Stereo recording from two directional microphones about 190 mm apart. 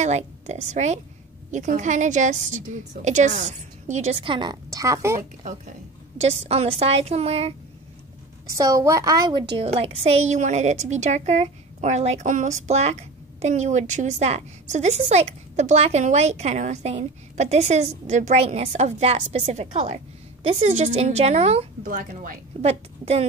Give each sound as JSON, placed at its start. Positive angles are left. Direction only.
{"t": 0.0, "sound": "a woman's voice", "side_deg": -35}
{"t": 5.4, "sound": "a woman's voice", "side_deg": -40}
{"t": 8.5, "sound": "a woman's voice", "side_deg": -15}
{"t": 22.7, "sound": "a woman's voice", "side_deg": -30}